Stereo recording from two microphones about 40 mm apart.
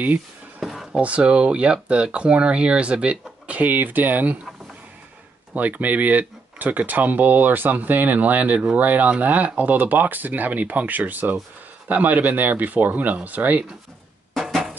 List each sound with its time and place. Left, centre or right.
0.6 s a sound: centre
0.9 s speech: right
5.5 s speech: right